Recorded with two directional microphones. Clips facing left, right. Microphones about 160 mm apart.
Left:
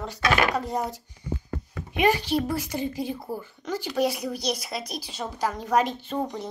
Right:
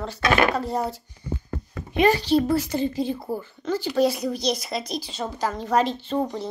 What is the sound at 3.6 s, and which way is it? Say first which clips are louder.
A woman's voice: right 4 dB; 15° left (ahead or behind).